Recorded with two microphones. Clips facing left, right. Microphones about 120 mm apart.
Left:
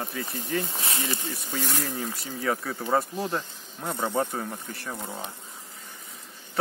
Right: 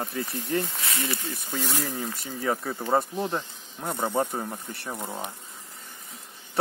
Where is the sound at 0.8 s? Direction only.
25° left (ahead or behind).